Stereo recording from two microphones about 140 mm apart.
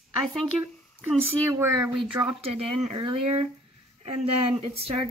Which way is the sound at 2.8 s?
45° right (ahead or behind).